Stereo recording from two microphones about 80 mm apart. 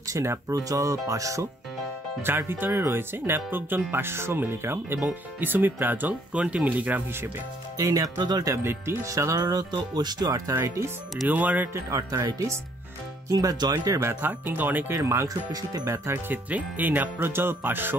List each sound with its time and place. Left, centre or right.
0.1 s speech: right
2.2 s speech: right
7.7 s speech: right
10.5 s speech: right
11.2 s speech: centre
11.7 s speech: right
14.0 s speech: right
14.9 s speech: right
15.2 s speech: right
15.9 s speech: right